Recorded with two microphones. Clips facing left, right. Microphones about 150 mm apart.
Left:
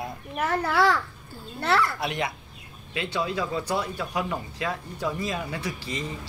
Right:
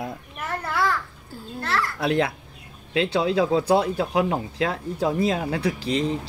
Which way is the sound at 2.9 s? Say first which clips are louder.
Right 7 dB; 90° right.